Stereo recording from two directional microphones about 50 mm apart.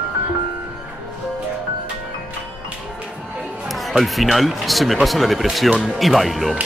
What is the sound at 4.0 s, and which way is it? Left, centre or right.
Speech, centre.